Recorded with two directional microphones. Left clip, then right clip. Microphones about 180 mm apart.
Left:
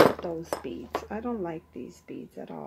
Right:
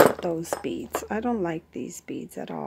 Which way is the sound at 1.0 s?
50° right (ahead or behind).